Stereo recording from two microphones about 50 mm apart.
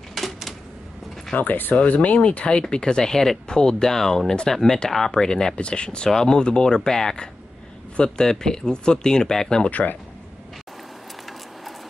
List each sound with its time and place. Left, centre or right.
0.1 s typewriter: centre
1.3 s speech: left; by 9.7 s centre
9.7 s speech: left